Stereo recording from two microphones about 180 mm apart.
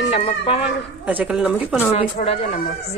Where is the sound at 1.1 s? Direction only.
5° right (ahead or behind).